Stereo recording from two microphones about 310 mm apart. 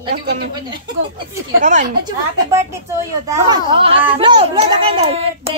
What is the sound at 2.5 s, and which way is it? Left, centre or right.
A child's voice, centre.